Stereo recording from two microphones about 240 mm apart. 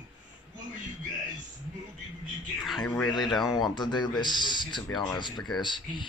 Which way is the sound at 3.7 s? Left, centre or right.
Centre.